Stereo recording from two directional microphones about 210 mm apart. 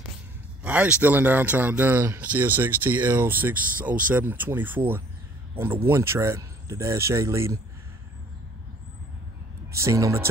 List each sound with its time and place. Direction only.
0.7 s speech: 5° right (ahead or behind)
9.8 s speech: 15° right (ahead or behind)